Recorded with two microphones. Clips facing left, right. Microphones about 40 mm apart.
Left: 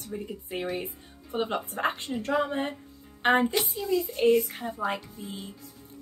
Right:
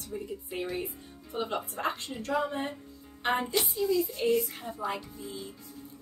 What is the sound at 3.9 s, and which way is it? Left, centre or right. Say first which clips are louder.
A woman's voice: left 6 dB; left.